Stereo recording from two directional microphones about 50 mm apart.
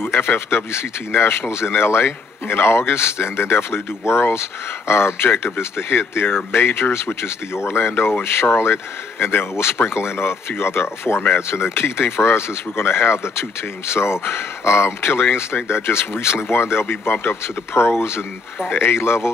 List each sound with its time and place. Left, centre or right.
0.0 s speech: left
17.7 s speech: left